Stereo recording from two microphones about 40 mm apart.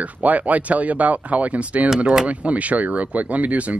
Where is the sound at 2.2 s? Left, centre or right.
Right.